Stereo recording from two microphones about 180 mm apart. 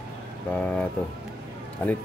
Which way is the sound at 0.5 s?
5° left (ahead or behind).